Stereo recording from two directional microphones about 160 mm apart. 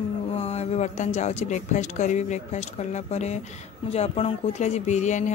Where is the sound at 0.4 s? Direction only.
40° left (ahead or behind).